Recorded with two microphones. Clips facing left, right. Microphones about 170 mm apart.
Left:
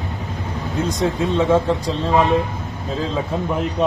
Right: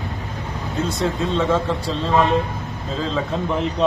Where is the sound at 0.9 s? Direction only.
15° left (ahead or behind).